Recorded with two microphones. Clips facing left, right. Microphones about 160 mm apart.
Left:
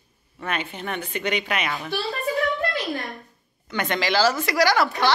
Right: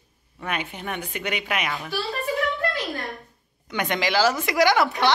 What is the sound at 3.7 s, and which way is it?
A woman's voice, 15° right (ahead or behind).